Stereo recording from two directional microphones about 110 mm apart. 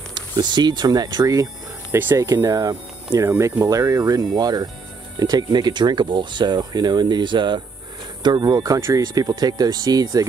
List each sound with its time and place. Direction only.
0.1 s speech: 40° right (ahead or behind)
2.0 s speech: 20° right (ahead or behind)
2.3 s speech: 30° right (ahead or behind)